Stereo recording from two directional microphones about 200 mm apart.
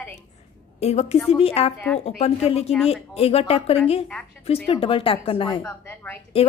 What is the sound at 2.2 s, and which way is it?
A woman's voice, 30° left (ahead or behind).